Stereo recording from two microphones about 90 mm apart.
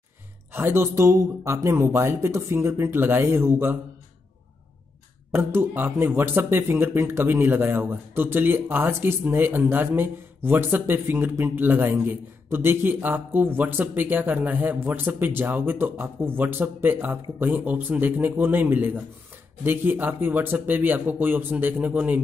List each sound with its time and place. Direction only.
0.5 s speech: 25° right (ahead or behind)
5.3 s speech: 25° right (ahead or behind)